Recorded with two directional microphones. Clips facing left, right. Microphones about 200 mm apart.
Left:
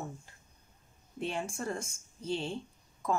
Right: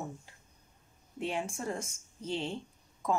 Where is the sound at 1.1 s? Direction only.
15° right (ahead or behind).